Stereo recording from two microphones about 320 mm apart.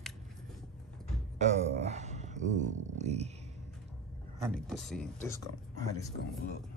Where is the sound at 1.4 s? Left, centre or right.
Right.